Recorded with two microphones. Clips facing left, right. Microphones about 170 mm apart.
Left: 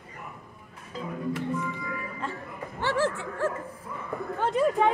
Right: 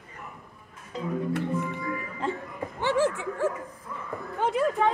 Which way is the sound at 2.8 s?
15° right (ahead or behind).